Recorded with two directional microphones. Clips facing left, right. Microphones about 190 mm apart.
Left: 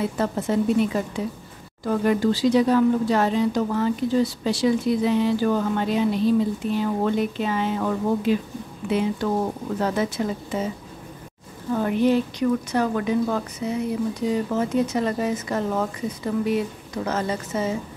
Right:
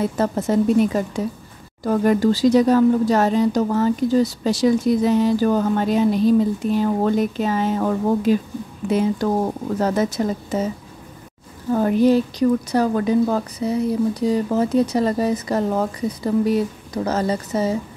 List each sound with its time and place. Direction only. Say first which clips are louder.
0.0 s speech: right 4 dB; 40° right (ahead or behind)
11.7 s speech: right 4 dB; 40° right (ahead or behind)